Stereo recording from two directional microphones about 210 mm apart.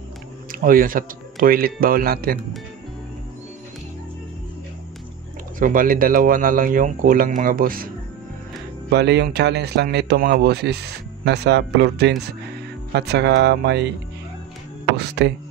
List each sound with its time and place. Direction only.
0.5 s speech: 40° right (ahead or behind)
5.6 s speech: 40° right (ahead or behind)
8.9 s speech: 55° right (ahead or behind)
15.0 s speech: 55° right (ahead or behind)